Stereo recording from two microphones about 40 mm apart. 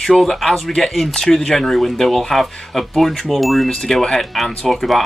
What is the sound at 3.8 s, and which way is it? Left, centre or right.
Speech, centre.